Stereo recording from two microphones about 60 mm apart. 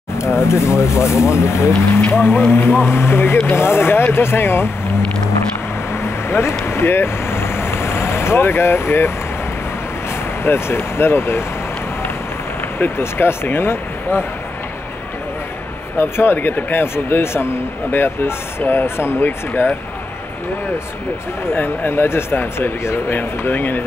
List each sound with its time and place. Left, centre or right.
0.2 s speech: left
6.0 s vehicle: left
10.4 s speech: left
12.7 s speech: left
16.0 s speech: left
21.5 s speech: left